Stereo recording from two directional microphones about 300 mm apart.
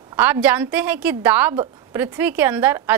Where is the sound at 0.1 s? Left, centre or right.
Centre.